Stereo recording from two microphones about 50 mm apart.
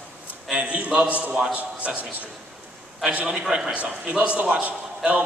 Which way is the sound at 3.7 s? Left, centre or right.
Right.